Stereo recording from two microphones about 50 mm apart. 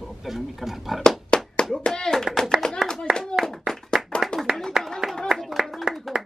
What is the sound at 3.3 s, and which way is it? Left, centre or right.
Speech, left.